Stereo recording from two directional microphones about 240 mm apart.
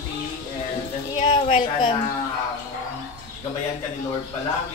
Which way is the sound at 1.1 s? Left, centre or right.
Left.